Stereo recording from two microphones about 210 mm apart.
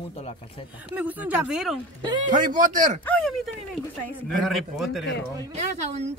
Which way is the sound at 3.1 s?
5° left (ahead or behind).